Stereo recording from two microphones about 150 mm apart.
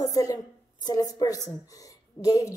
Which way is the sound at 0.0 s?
25° left (ahead or behind).